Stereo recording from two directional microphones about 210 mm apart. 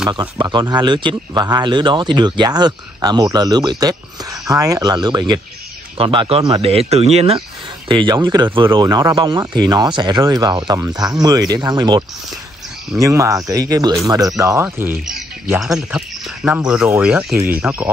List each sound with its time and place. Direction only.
0.1 s speech: 20° right (ahead or behind)
15.0 s bird: centre (ahead or behind)
15.6 s speech: centre (ahead or behind)